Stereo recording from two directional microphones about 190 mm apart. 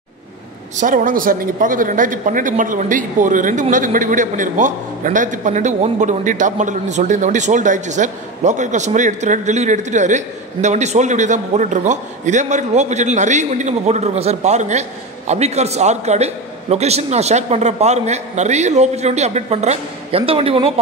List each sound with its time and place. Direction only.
0.7 s a man's voice: 45° right (ahead or behind)